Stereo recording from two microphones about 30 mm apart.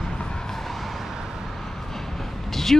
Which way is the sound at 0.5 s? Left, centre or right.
Centre.